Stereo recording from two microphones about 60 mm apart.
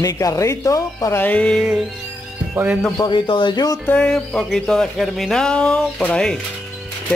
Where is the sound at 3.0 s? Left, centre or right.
Left.